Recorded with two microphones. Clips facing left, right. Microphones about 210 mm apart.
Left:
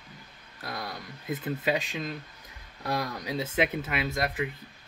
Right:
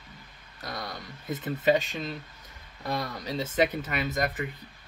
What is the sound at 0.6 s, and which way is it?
Speech, 5° left (ahead or behind).